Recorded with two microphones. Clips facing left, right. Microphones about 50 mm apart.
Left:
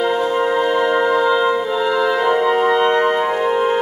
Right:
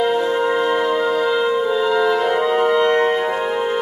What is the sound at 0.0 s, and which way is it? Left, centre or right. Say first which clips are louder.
Music: even; centre.